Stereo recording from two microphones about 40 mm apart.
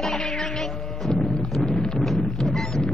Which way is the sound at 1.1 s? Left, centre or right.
Centre.